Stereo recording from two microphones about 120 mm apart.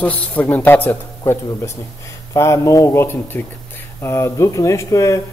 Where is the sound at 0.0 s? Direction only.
15° left (ahead or behind).